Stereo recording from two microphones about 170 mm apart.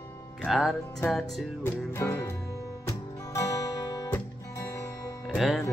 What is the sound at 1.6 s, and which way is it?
Music, 15° left (ahead or behind).